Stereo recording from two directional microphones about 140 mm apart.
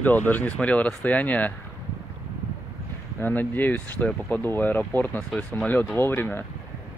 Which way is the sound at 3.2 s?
15° left (ahead or behind).